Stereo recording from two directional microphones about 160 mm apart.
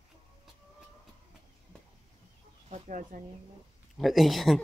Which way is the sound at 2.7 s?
45° right (ahead or behind).